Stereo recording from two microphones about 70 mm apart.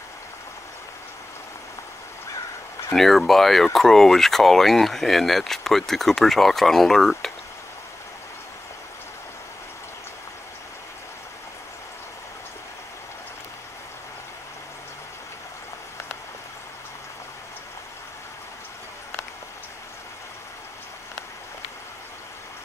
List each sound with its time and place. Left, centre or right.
2.9 s speech: centre